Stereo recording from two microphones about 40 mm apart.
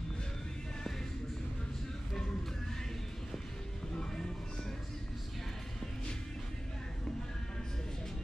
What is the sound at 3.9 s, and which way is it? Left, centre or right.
Music, centre.